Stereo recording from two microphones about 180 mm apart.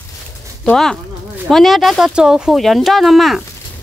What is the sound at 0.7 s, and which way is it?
Speech, 5° left (ahead or behind).